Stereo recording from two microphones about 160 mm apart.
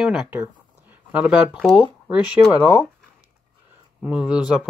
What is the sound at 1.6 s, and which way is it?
Speech, 5° left (ahead or behind).